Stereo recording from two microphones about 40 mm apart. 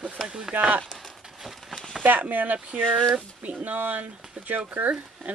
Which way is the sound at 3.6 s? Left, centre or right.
Right.